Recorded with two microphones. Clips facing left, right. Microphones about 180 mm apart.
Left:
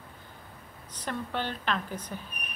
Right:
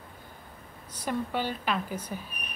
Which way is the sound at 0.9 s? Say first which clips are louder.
Right 3 dB; 10° right (ahead or behind).